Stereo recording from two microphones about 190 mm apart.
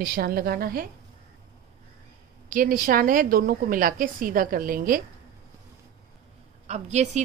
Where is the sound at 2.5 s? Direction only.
45° right (ahead or behind).